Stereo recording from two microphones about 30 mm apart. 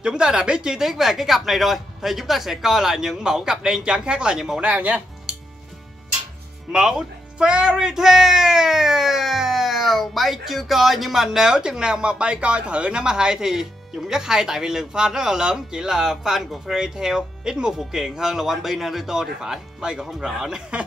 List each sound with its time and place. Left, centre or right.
0.0 s speech: right
0.7 s speech: centre
4.6 s speech: right
6.7 s speech: right
7.8 s speech: centre
11.4 s speech: right
13.0 s speech: right
19.8 s speech: right